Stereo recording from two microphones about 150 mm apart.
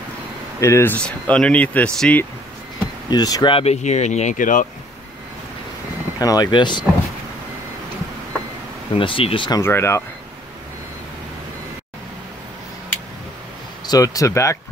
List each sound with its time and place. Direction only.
0.6 s speech: 20° left (ahead or behind)
0.9 s speech: 5° left (ahead or behind)
3.1 s speech: 25° left (ahead or behind)
3.5 s speech: 45° left (ahead or behind); by 4.6 s 60° left (ahead or behind)
6.1 s speech: 25° left (ahead or behind)
8.9 s speech: 35° left (ahead or behind)
9.6 s speech: 15° left (ahead or behind)
13.8 s speech: 25° left (ahead or behind)